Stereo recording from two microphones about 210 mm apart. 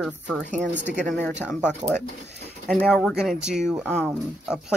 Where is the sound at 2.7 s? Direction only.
5° right (ahead or behind).